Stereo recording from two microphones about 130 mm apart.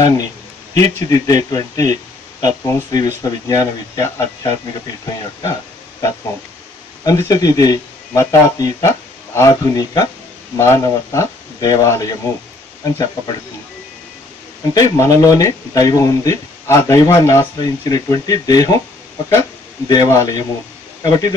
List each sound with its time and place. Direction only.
0.0 s speech: 25° left (ahead or behind)
14.7 s speech: 30° left (ahead or behind)
19.9 s speech: 30° left (ahead or behind)